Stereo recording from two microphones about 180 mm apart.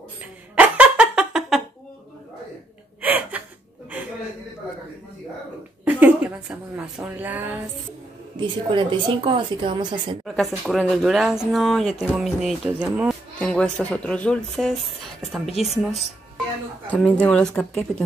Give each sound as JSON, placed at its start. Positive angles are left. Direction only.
{"t": 0.2, "sound": "a sound", "side_deg": -10}
{"t": 3.0, "sound": "gasp", "side_deg": -10}
{"t": 5.9, "sound": "a sound", "side_deg": -10}
{"t": 7.0, "sound": "speech", "side_deg": -10}
{"t": 8.4, "sound": "speech", "side_deg": -25}
{"t": 10.2, "sound": "speech", "side_deg": 0}
{"t": 13.4, "sound": "speech", "side_deg": 5}
{"t": 16.9, "sound": "speech", "side_deg": 10}